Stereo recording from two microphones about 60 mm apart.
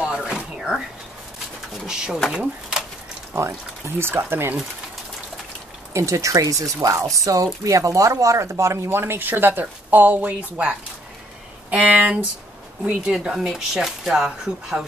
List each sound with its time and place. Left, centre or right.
0.0 s music: centre
1.9 s speech: centre
3.3 s speech: right
5.9 s speech: right
11.7 s speech: right
13.0 s speech: centre